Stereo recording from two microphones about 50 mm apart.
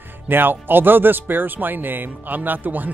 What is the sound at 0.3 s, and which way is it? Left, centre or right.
Speech, right.